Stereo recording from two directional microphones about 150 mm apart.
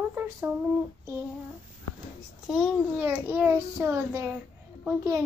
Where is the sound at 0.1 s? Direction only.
10° right (ahead or behind).